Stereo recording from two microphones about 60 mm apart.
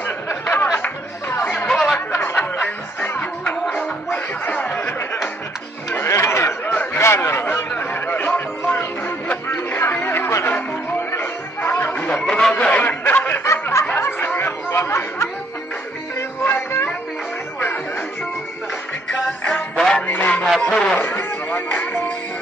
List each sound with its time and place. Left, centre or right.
0.0 s a sound: left
0.7 s music: left
2.0 s chatter: left
3.0 s music: left
5.9 s a sound: left
6.6 s a sound: left
7.0 s a sound: left
7.7 s music: left
12.1 s snicker: centre; by 13.4 s left
13.4 s snicker: left
16.4 s music: left
19.4 s music: left
20.6 s music: centre
21.2 s music: left